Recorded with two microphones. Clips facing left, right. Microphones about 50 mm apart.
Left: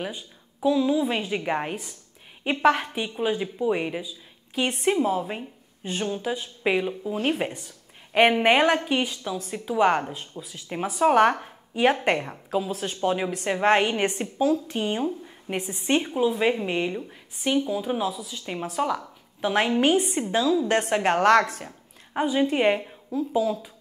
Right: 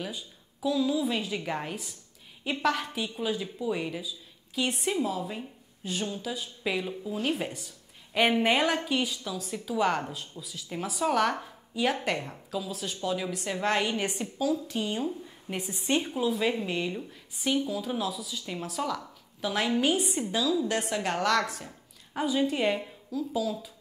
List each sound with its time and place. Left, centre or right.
0.0 s a woman's voice: left
22.1 s a woman's voice: left